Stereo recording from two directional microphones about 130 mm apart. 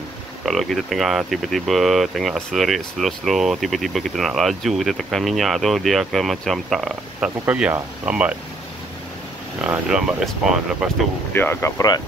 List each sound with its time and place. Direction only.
0.5 s speech: centre (ahead or behind)
9.6 s speech: 5° right (ahead or behind)
11.3 s speech: 15° left (ahead or behind)